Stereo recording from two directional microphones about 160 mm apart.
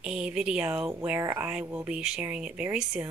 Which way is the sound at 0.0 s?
5° right (ahead or behind).